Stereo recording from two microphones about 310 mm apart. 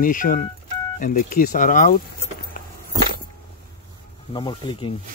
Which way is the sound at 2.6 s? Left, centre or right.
Left.